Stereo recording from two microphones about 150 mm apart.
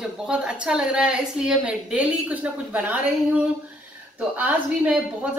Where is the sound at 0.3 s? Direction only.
5° right (ahead or behind).